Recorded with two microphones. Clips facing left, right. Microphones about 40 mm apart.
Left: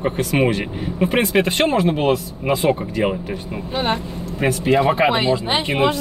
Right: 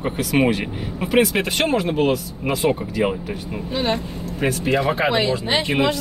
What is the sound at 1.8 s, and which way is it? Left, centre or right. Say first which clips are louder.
Speech: left 2 dB; left.